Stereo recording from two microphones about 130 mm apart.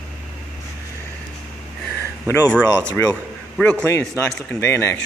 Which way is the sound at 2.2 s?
25° left (ahead or behind).